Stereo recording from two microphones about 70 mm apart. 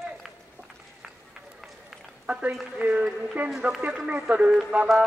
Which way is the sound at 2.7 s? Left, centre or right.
Centre.